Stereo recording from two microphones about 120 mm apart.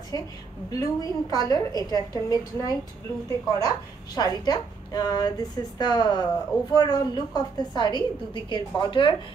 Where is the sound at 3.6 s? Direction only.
35° left (ahead or behind).